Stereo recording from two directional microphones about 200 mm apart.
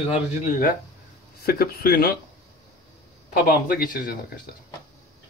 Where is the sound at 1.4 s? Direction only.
50° left (ahead or behind).